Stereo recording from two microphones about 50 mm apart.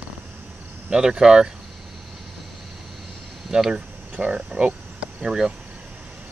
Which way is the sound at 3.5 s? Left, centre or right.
Centre.